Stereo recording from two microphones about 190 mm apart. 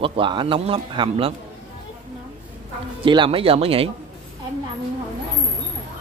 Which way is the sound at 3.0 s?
25° right (ahead or behind).